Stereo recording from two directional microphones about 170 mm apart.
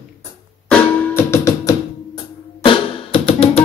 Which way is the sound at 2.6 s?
30° left (ahead or behind).